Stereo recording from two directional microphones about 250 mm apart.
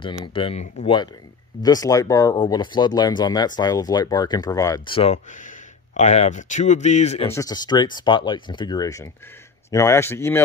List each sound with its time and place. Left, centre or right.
0.0 s speech: centre
7.2 s speech: centre